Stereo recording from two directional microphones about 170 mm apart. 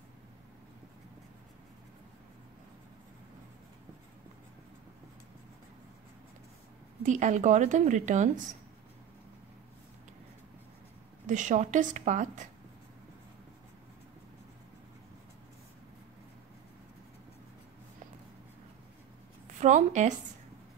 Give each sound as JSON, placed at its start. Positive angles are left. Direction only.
{"t": 7.0, "sound": "a woman's voice", "side_deg": -45}
{"t": 11.2, "sound": "a woman's voice", "side_deg": -45}
{"t": 19.6, "sound": "a woman's voice", "side_deg": -45}